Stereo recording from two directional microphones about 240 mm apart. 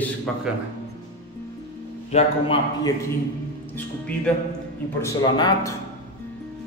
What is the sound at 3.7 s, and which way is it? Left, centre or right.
A man's voice, centre.